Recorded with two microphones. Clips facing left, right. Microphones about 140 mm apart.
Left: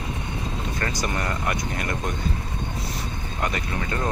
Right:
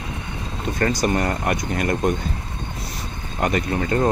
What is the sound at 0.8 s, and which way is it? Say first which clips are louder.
Speech: right 9 dB; 45° right (ahead or behind).